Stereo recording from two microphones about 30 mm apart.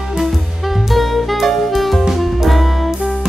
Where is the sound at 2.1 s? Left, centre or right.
Centre.